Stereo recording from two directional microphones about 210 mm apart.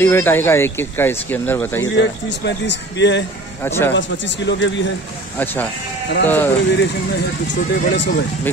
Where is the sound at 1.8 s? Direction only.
55° left (ahead or behind).